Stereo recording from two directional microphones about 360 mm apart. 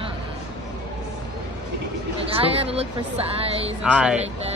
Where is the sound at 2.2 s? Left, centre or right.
Centre.